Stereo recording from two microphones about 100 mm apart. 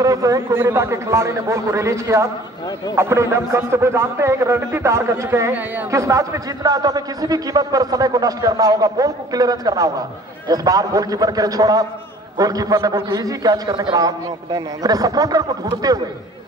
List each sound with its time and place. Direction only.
0.0 s a man's voice: 35° right (ahead or behind)